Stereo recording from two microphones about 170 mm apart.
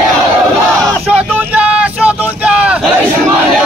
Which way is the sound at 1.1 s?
10° right (ahead or behind).